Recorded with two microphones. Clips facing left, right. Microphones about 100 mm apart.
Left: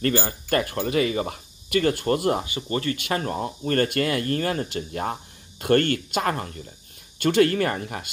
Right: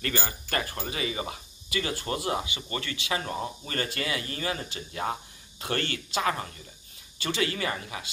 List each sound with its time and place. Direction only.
0.0 s speech: 35° left (ahead or behind)
0.8 s speech: 55° left (ahead or behind)